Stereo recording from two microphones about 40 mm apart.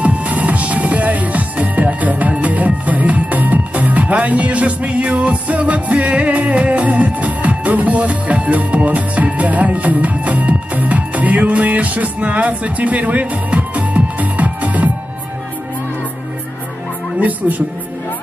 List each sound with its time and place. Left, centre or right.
0.0 s music: right
17.2 s a woman's voice: right